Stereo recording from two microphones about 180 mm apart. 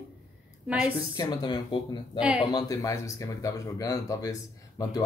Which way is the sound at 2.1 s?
5° right (ahead or behind).